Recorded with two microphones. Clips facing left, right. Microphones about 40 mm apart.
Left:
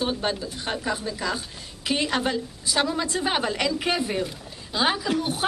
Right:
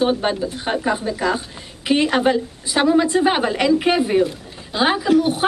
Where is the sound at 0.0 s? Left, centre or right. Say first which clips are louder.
Right 8 dB; right.